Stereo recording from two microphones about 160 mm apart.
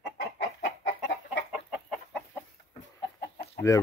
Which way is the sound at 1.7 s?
Centre (ahead or behind).